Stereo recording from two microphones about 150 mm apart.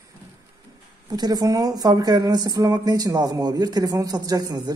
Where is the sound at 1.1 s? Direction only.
25° right (ahead or behind).